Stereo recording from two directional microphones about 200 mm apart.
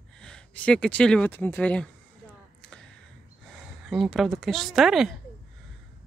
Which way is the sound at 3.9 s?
Centre (ahead or behind).